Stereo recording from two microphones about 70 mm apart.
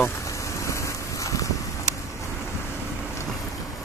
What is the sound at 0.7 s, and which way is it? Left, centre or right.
Wind, left.